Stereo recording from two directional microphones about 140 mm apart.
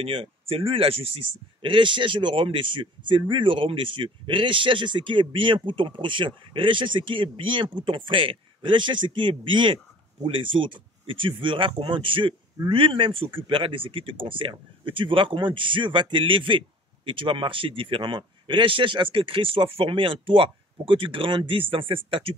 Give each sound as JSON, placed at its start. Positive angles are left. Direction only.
{"t": 0.0, "sound": "speech", "side_deg": -40}